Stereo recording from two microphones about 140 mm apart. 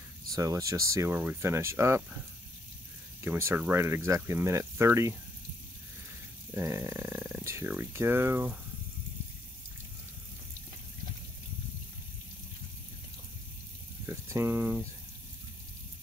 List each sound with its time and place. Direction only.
0.3 s speech: 25° right (ahead or behind)
3.2 s speech: 20° right (ahead or behind)
6.5 s speech: 20° right (ahead or behind)
14.0 s speech: 20° right (ahead or behind)